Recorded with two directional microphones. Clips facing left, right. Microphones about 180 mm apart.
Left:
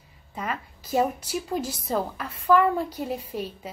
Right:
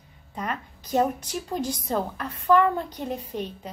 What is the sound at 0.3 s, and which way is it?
A woman's voice, 5° left (ahead or behind).